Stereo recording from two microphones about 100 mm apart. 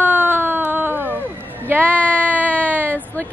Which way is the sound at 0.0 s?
20° right (ahead or behind).